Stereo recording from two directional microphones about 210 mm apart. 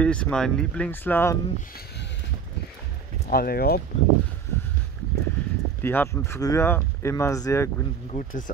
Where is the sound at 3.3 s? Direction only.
45° left (ahead or behind).